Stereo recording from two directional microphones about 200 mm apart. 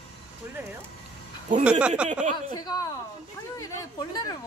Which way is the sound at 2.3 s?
20° left (ahead or behind).